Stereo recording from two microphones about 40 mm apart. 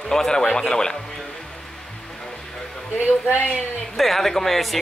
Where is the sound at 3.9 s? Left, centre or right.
Centre.